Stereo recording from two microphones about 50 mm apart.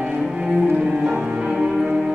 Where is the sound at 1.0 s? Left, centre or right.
Centre.